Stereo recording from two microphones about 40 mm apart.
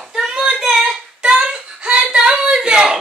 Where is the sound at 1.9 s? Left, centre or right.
Right.